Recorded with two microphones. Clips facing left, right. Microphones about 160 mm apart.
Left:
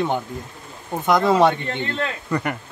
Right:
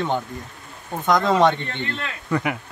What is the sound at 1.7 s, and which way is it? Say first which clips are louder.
Speech: left 4 dB; 40° left (ahead or behind).